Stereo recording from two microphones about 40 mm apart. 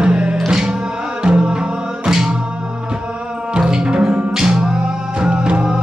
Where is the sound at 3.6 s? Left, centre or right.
Centre.